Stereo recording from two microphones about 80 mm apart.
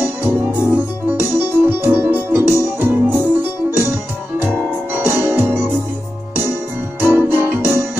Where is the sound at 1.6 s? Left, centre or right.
Right.